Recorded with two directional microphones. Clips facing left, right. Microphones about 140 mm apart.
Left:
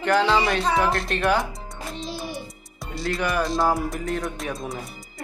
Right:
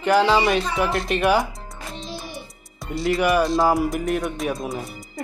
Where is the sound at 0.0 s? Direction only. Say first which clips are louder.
Right 3 dB; 15° right (ahead or behind).